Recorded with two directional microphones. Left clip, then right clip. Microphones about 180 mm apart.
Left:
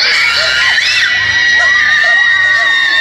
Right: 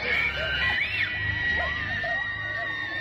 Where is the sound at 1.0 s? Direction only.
35° right (ahead or behind).